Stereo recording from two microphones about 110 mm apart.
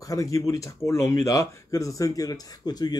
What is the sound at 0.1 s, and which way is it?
Speech, 30° left (ahead or behind).